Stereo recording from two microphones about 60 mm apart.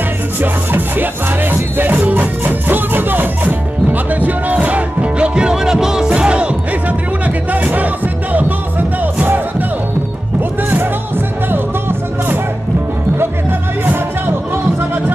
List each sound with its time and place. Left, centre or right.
0.4 s music: right
13.2 s music: right